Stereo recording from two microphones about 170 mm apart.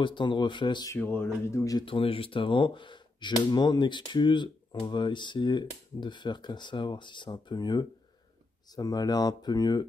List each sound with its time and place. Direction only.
0.0 s speech: 25° left (ahead or behind)
0.9 s speech: 10° left (ahead or behind)